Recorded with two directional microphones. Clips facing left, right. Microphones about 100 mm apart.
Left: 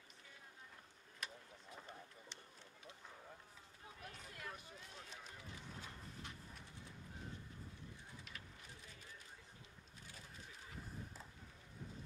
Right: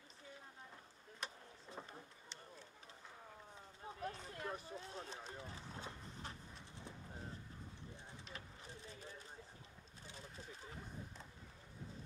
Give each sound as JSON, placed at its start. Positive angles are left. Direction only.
{"t": 1.2, "sound": "vehicle", "side_deg": -30}
{"t": 3.8, "sound": "run", "side_deg": -35}
{"t": 8.3, "sound": "a sound", "side_deg": -30}